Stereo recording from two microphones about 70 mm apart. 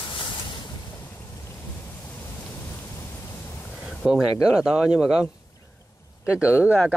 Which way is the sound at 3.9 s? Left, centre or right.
Centre.